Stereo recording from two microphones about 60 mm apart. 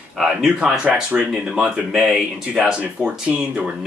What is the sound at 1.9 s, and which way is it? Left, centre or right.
Speech, centre.